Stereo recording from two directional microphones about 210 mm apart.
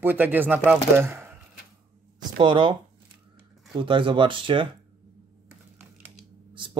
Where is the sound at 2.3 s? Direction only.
25° right (ahead or behind).